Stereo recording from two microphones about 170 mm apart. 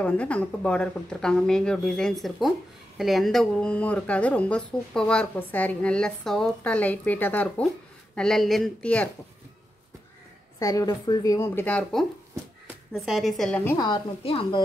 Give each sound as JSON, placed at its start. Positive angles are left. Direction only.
{"t": 0.0, "sound": "speech", "side_deg": 10}
{"t": 10.6, "sound": "speech", "side_deg": 20}
{"t": 13.7, "sound": "a woman's voice", "side_deg": 25}